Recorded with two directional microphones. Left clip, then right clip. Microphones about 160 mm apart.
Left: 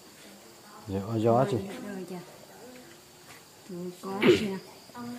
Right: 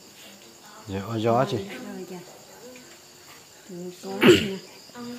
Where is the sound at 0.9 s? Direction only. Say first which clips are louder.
Right 2 dB; 5° left (ahead or behind).